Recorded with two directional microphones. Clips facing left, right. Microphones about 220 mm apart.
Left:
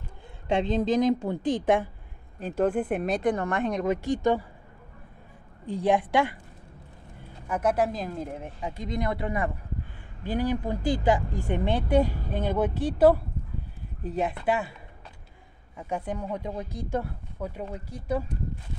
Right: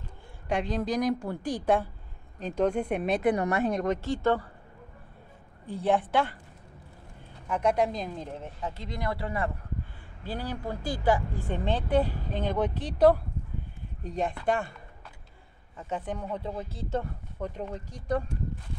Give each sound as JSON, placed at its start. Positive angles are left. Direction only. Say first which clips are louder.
{"t": 0.5, "sound": "a woman's voice", "louder": "left 4 dB", "side_deg": 25}
{"t": 2.4, "sound": "speech", "louder": "left 1 dB", "side_deg": 5}
{"t": 3.8, "sound": "speech", "louder": "left 2 dB", "side_deg": 10}
{"t": 5.7, "sound": "speech", "louder": "left 2 dB", "side_deg": 15}
{"t": 7.4, "sound": "speech", "louder": "left 1 dB", "side_deg": 5}
{"t": 15.9, "sound": "speech", "louder": "left 2 dB", "side_deg": 10}